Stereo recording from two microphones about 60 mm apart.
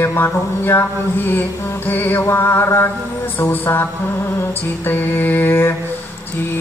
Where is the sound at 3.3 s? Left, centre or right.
Left.